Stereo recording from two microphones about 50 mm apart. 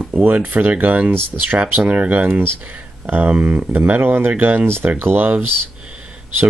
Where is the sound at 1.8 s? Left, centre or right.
Right.